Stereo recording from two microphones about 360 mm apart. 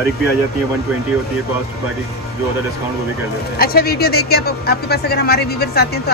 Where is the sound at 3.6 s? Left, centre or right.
Left.